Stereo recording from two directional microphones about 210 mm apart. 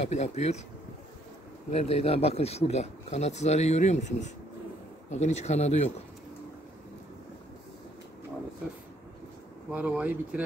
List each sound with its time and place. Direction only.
0.0 s speech: 30° left (ahead or behind)
1.7 s speech: 30° left (ahead or behind)
9.7 s speech: 5° right (ahead or behind)